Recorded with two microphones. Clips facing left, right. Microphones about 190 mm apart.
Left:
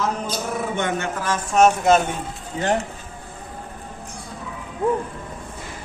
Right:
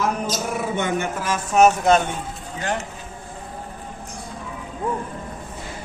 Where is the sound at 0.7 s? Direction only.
10° right (ahead or behind).